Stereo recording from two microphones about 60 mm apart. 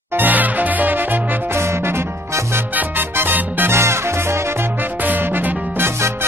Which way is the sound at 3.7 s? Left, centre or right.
Right.